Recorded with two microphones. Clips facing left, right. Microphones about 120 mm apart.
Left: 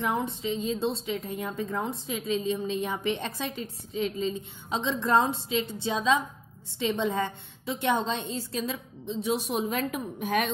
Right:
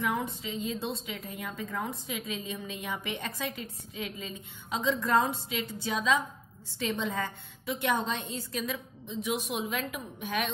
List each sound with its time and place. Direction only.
0.0 s a woman's voice: 25° left (ahead or behind); by 10.5 s 45° left (ahead or behind)